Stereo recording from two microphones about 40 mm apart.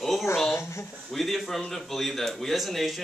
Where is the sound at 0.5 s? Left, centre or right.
Left.